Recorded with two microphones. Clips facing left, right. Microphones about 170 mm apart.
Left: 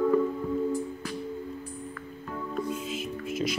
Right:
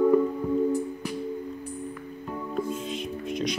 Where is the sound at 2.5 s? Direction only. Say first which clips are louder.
Right 2 dB; 5° left (ahead or behind).